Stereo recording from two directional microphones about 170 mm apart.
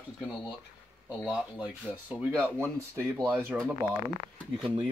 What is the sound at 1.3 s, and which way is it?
Speech, 10° right (ahead or behind).